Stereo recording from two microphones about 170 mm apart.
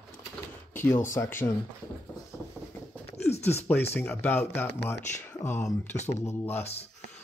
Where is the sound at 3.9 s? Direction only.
10° left (ahead or behind).